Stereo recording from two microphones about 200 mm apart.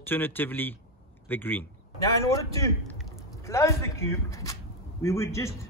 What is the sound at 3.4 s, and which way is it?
Speech, 15° left (ahead or behind).